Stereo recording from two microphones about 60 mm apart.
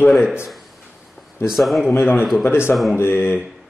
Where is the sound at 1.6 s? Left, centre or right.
Centre.